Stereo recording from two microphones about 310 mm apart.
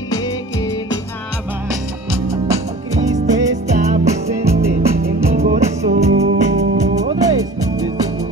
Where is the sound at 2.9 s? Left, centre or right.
Right.